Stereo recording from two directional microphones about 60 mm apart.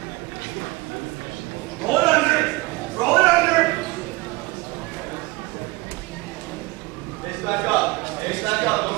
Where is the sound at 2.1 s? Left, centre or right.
Centre.